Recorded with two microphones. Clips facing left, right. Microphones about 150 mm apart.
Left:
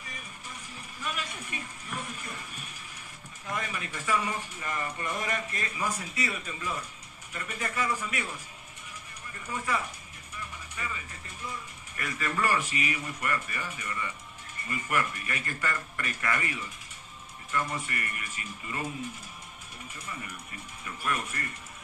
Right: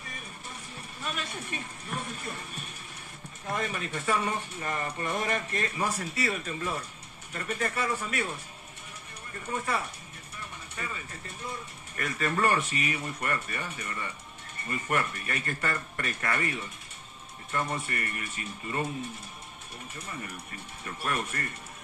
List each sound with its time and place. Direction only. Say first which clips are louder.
1.0 s speech: right 1 dB; 30° right (ahead or behind)
10.8 s speech: even; 35° right (ahead or behind)
12.0 s speech: right 3 dB; 35° right (ahead or behind)
20.8 s speech: right 1 dB; 30° right (ahead or behind)